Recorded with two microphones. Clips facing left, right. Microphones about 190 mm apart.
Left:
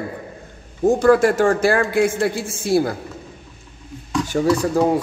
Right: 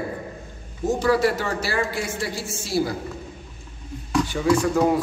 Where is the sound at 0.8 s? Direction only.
50° left (ahead or behind).